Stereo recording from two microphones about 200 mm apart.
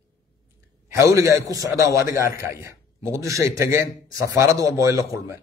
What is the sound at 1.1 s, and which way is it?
A man's voice, 15° right (ahead or behind).